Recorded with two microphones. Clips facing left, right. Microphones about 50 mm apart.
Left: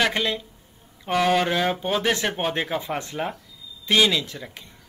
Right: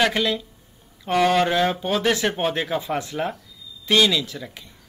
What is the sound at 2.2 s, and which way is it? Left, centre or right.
Speech, centre.